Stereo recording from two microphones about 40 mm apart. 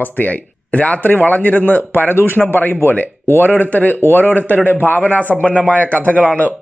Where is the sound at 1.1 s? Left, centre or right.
Left.